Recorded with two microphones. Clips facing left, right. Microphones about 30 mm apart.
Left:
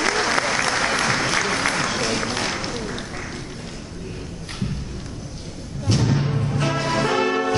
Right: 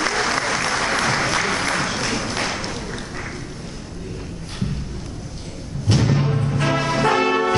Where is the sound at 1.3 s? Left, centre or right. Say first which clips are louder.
Right 1 dB; centre.